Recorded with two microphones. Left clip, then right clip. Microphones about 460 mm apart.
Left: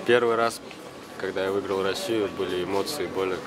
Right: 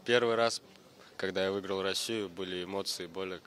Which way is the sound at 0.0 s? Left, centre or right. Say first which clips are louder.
Left 6 dB; right.